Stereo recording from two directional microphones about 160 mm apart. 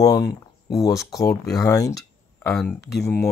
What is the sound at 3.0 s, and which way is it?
Speech, 15° left (ahead or behind).